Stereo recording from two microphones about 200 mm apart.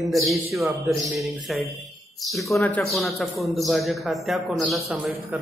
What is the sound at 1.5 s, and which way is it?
A man's voice, centre (ahead or behind).